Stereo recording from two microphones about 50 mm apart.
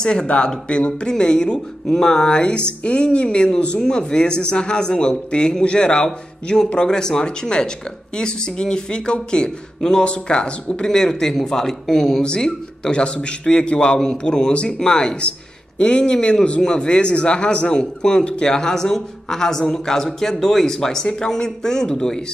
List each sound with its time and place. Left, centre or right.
0.0 s a man's voice: centre